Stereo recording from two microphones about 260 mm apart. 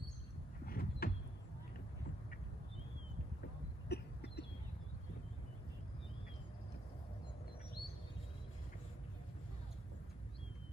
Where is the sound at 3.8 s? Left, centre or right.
Left.